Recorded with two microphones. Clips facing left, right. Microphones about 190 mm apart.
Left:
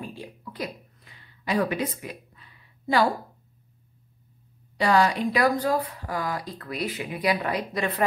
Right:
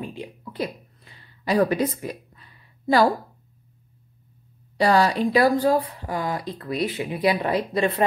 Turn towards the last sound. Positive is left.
turn(degrees=-30)  # may be behind; listen again after turning